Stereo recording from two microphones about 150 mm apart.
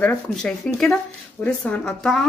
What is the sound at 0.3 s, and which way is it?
Speech, 5° left (ahead or behind).